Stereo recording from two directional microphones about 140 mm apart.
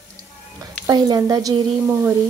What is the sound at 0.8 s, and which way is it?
Speech, 25° right (ahead or behind).